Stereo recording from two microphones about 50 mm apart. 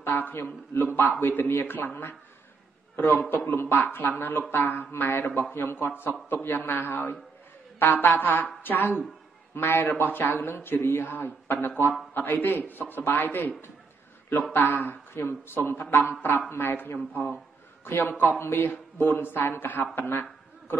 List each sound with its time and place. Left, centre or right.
0.0 s a woman's voice: left
3.5 s speech: left
3.8 s a woman's voice: left
9.6 s a woman's voice: left
18.4 s mantra: left